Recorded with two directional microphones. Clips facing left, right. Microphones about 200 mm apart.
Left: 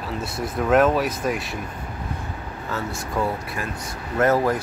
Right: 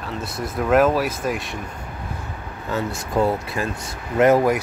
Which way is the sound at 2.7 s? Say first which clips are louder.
Right 4 dB; 25° right (ahead or behind).